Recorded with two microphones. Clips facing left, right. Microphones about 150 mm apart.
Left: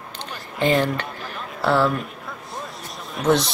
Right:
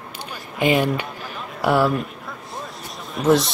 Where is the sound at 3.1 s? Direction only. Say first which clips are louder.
Right 2 dB; centre (ahead or behind).